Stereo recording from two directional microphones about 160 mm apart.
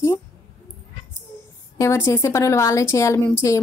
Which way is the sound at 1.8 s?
15° left (ahead or behind).